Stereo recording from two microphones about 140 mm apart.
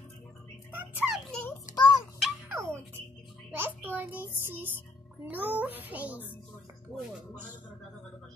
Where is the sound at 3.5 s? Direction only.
15° right (ahead or behind).